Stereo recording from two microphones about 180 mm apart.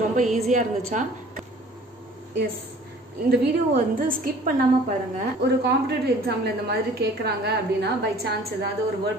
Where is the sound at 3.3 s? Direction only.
55° right (ahead or behind).